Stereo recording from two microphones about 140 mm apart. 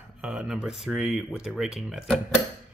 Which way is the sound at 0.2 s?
5° right (ahead or behind).